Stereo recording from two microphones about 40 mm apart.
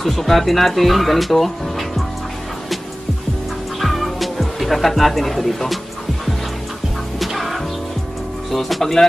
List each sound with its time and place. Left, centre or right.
0.0 s speech: centre
3.8 s music: centre
7.2 s music: centre
8.5 s speech: centre